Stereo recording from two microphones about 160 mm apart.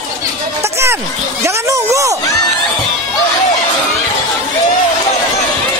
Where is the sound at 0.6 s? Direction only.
15° right (ahead or behind).